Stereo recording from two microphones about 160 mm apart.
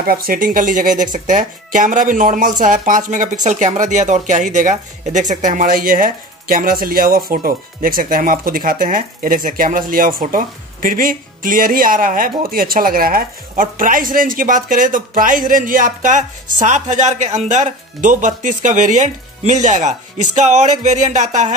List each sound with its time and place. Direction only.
0.0 s speech: 65° right (ahead or behind); by 21.5 s 50° right (ahead or behind)